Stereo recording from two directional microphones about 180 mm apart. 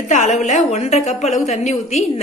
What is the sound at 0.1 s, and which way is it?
A woman's voice, 45° left (ahead or behind).